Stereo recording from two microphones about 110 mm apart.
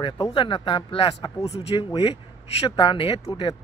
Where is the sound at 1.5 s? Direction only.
60° left (ahead or behind).